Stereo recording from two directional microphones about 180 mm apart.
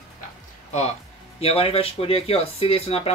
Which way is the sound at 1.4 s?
30° left (ahead or behind).